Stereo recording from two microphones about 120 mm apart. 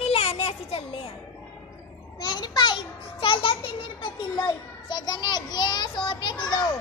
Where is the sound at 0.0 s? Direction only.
60° left (ahead or behind).